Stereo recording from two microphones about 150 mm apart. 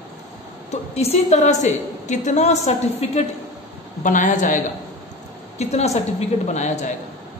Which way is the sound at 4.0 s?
55° left (ahead or behind).